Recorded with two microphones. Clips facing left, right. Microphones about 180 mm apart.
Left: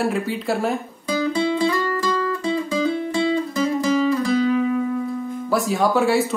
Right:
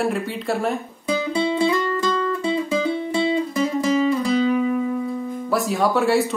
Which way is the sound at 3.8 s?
Centre (ahead or behind).